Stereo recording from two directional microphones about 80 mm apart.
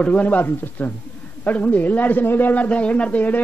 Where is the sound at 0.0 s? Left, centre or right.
Centre.